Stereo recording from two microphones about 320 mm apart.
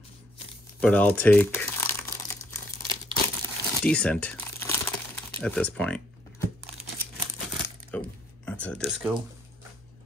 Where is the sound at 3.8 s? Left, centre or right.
Centre.